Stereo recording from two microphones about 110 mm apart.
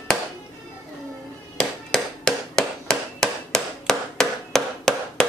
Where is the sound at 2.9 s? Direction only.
5° left (ahead or behind).